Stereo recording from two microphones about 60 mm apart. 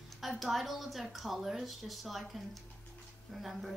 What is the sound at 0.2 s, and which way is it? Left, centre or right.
A woman's voice, centre.